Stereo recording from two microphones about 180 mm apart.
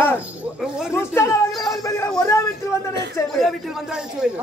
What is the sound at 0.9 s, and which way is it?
Speech, 15° left (ahead or behind).